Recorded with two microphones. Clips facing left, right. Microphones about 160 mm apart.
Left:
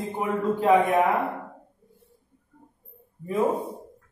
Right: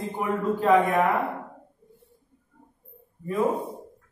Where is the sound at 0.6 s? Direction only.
20° left (ahead or behind).